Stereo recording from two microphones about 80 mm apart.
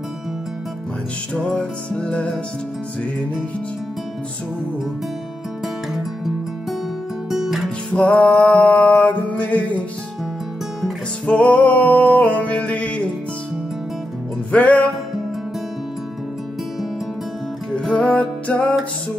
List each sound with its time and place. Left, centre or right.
1.3 s music: centre
7.2 s music: centre
7.9 s music: centre
11.2 s music: centre
14.5 s music: centre
17.7 s music: centre